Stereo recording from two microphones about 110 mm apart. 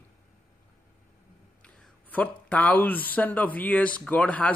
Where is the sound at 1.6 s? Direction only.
10° left (ahead or behind).